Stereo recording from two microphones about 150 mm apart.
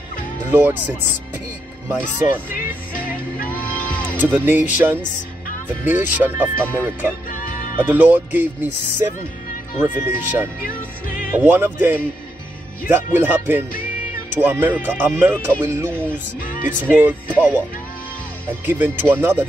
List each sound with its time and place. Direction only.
0.5 s speech: 15° right (ahead or behind)
2.5 s music: 70° left (ahead or behind)
3.5 s music: 10° left (ahead or behind)
4.2 s speech: 15° right (ahead or behind)
9.8 s speech: 15° right (ahead or behind)
18.7 s speech: 15° right (ahead or behind)